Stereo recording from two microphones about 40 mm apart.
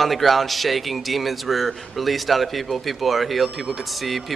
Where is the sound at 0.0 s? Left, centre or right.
Centre.